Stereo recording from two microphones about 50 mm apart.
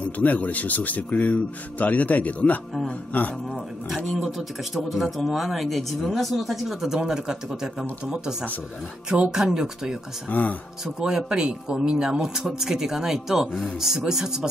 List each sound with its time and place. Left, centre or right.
0.2 s a man's voice: left
4.7 s a man's voice: centre
10.3 s a man's voice: left
11.0 s speech: centre